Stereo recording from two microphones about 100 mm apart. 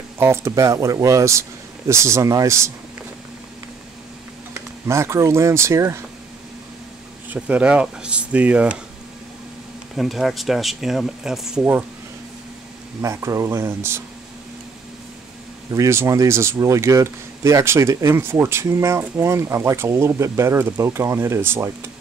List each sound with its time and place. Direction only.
0.2 s speech: 25° right (ahead or behind)
4.6 s speech: 30° right (ahead or behind)
7.2 s speech: 15° right (ahead or behind)
9.9 s speech: centre (ahead or behind)
13.0 s speech: 30° right (ahead or behind)
15.7 s speech: 30° right (ahead or behind)